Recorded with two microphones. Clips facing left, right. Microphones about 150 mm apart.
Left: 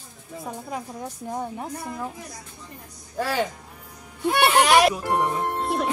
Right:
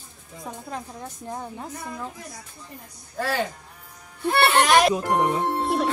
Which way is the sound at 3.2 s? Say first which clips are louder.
Left 1 dB; 10° left (ahead or behind).